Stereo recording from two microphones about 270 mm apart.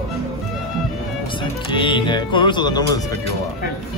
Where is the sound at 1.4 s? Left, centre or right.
Centre.